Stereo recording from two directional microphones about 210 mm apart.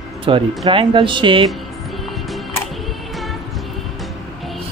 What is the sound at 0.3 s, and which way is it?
Speech, 25° right (ahead or behind).